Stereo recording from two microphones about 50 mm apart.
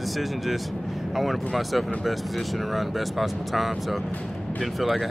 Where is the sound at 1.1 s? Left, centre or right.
Centre.